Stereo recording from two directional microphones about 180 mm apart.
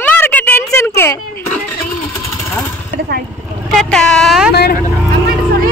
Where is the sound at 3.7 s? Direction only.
Centre (ahead or behind).